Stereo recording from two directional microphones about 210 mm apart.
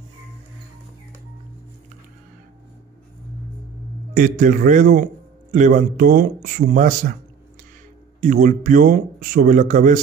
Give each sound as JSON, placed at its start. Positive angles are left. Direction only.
{"t": 4.1, "sound": "a man's voice", "side_deg": -40}
{"t": 8.2, "sound": "a man's voice", "side_deg": -40}